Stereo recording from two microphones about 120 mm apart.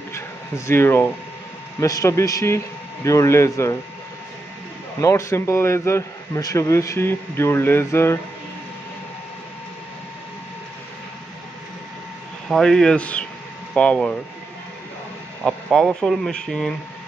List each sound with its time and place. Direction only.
0.7 s a man's voice: 20° left (ahead or behind)
5.0 s a man's voice: 25° left (ahead or behind)
12.4 s speech: 5° left (ahead or behind)
15.4 s speech: 5° left (ahead or behind)